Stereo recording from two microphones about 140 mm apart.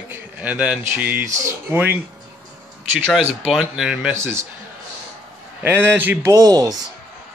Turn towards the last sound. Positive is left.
turn(degrees=-30)  # may be behind; listen again after turning